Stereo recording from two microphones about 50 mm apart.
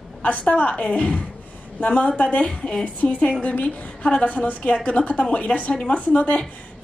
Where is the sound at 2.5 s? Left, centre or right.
Centre.